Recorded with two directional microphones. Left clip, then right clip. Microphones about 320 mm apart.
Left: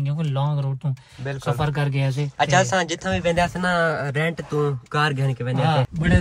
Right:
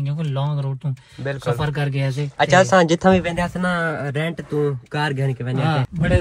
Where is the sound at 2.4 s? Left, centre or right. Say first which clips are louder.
Right 5 dB; centre.